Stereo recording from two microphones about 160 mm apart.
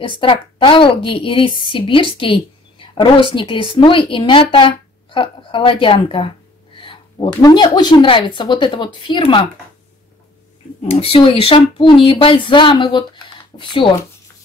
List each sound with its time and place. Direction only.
0.2 s a woman's voice: 30° left (ahead or behind)
10.8 s a woman's voice: 40° left (ahead or behind)